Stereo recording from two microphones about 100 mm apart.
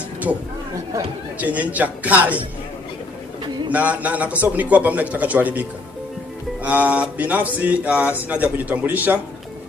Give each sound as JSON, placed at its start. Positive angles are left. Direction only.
{"t": 1.4, "sound": "speech", "side_deg": -15}
{"t": 3.7, "sound": "speech", "side_deg": -15}